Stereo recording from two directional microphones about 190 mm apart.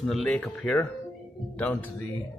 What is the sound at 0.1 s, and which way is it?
Speech, centre (ahead or behind).